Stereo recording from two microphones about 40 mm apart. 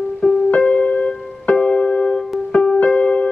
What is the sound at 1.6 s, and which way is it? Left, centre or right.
Music, left.